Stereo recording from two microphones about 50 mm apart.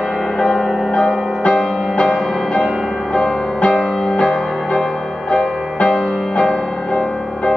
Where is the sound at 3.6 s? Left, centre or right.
Centre.